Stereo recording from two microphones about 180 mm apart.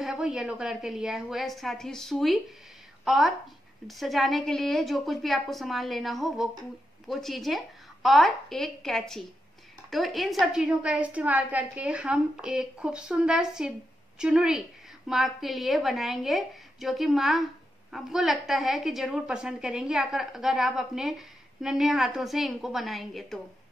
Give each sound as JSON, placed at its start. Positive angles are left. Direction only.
{"t": 0.0, "sound": "a woman's voice", "side_deg": -5}